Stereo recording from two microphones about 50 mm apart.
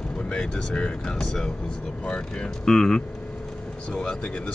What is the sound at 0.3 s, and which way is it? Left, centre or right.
Speech, centre.